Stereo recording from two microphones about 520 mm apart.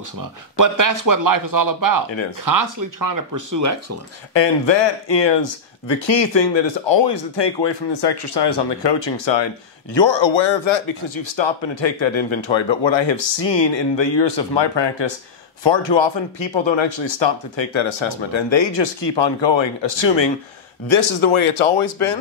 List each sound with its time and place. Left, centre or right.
0.6 s speech: right
4.3 s speech: left